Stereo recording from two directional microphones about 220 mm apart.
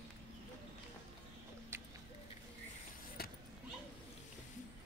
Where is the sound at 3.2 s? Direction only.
45° left (ahead or behind).